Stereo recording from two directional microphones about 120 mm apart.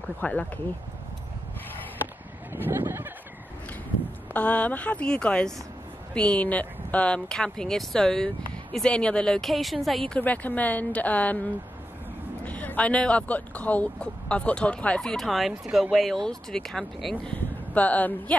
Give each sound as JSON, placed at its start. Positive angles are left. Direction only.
{"t": 0.2, "sound": "speech", "side_deg": 10}
{"t": 2.5, "sound": "speech", "side_deg": -20}
{"t": 4.3, "sound": "speech", "side_deg": 10}
{"t": 12.4, "sound": "speech", "side_deg": 10}